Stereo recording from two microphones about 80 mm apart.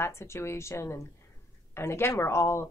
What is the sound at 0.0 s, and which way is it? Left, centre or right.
Speech, left.